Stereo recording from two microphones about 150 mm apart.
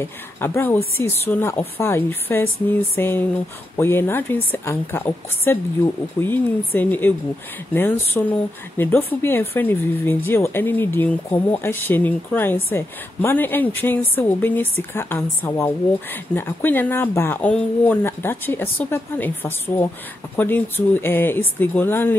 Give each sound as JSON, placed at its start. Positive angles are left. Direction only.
{"t": 0.0, "sound": "speech", "side_deg": 15}